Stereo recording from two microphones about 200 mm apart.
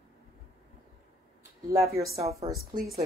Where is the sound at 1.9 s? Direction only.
15° right (ahead or behind).